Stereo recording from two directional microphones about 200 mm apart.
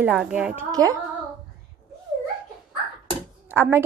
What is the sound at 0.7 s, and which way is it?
Speech, 15° right (ahead or behind).